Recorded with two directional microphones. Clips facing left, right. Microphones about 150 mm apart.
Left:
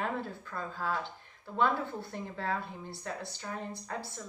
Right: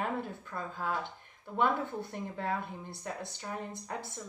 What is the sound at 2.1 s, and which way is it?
A woman's voice, 15° right (ahead or behind).